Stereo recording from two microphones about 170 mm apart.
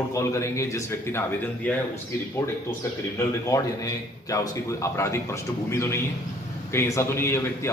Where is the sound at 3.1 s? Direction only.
20° left (ahead or behind).